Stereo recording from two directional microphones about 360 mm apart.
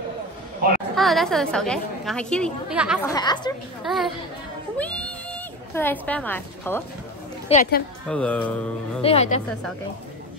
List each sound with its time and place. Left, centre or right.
0.9 s a woman's voice: centre
3.1 s a woman's voice: centre
3.8 s a woman's voice: centre
7.4 s a woman's voice: centre
8.1 s a woman's voice: centre
9.0 s a woman's voice: centre